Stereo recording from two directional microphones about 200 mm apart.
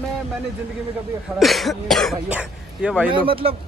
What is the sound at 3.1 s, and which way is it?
Speech, 25° right (ahead or behind).